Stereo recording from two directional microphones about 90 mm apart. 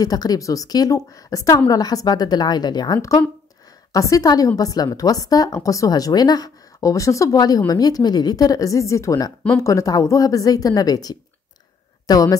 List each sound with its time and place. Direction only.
0.0 s a woman's voice: 45° left (ahead or behind)
3.0 s a woman's voice: 40° left (ahead or behind)